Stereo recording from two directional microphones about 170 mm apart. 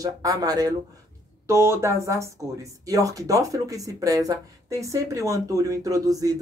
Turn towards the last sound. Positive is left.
turn(degrees=-20)  # may be behind; listen again after turning